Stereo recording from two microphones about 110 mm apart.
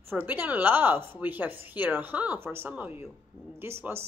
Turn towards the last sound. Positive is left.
turn(degrees=-20)  # may be behind; listen again after turning